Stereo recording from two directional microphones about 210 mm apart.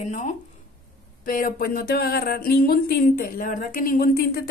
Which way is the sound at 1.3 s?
40° left (ahead or behind).